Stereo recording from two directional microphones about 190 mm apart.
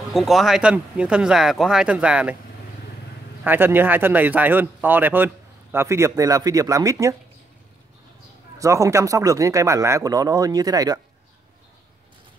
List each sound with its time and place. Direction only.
0.1 s speech: centre (ahead or behind)
3.4 s speech: 10° right (ahead or behind)
8.5 s speech: 15° right (ahead or behind)